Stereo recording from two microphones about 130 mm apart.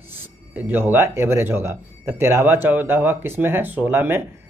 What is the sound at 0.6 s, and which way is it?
Speech, 15° right (ahead or behind).